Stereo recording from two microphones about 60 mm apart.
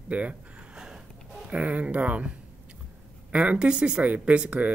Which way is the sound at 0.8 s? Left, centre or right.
Centre.